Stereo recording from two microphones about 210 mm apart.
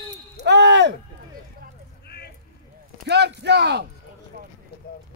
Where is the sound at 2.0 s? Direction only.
50° left (ahead or behind).